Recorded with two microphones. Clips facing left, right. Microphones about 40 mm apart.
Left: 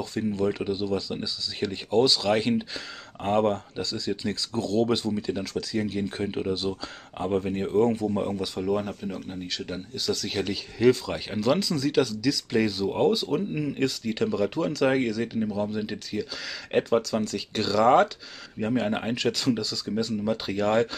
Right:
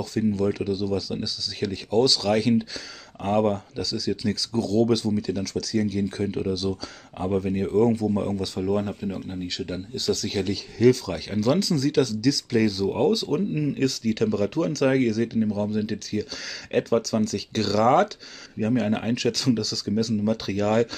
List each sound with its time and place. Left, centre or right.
0.3 s speech: centre
8.1 s speech: centre
8.5 s speech: centre